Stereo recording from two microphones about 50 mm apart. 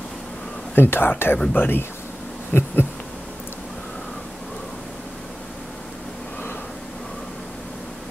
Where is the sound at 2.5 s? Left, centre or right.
Left.